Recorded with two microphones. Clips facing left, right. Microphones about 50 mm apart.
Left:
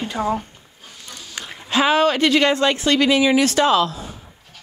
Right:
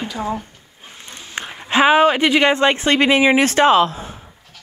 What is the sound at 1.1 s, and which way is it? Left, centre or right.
Speech, right.